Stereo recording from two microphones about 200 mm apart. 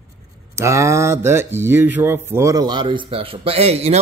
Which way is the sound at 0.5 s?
15° right (ahead or behind).